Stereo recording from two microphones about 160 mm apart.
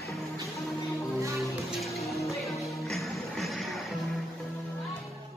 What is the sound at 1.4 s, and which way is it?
Music, centre (ahead or behind).